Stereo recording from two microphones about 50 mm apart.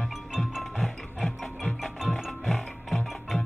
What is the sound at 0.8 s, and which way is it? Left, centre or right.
Music, centre.